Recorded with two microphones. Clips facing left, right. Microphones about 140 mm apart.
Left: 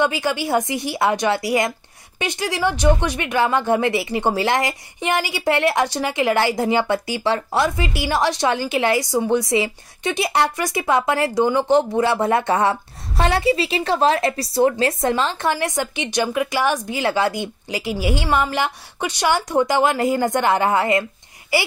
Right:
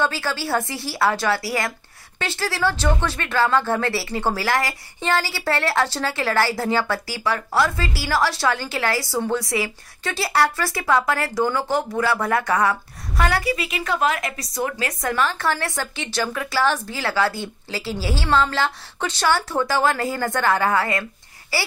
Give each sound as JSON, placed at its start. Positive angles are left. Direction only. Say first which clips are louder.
{"t": 0.0, "sound": "speech", "louder": "left 4 dB", "side_deg": 15}